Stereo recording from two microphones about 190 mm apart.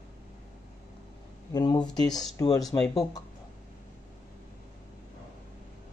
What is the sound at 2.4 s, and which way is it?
Speech, 20° left (ahead or behind).